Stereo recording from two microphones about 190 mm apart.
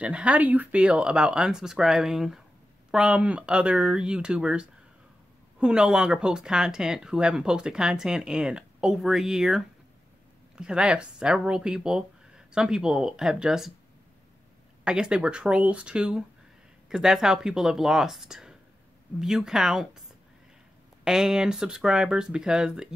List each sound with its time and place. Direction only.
0.0 s speech: 5° right (ahead or behind)
10.6 s speech: 5° right (ahead or behind)
14.9 s speech: 5° right (ahead or behind)
21.0 s speech: 5° right (ahead or behind)